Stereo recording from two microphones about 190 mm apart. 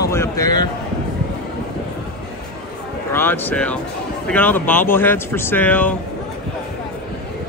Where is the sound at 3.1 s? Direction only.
10° left (ahead or behind).